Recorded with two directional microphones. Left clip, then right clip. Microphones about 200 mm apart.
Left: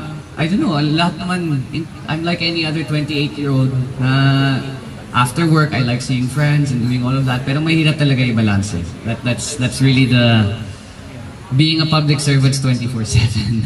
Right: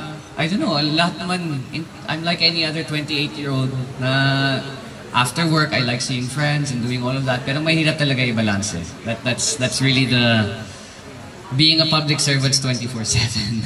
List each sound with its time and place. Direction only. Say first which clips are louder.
0.4 s speech: left 2 dB; 40° right (ahead or behind)
11.5 s speech: right 1 dB; 40° right (ahead or behind)